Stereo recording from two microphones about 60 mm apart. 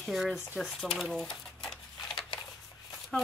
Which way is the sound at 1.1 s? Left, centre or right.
Centre.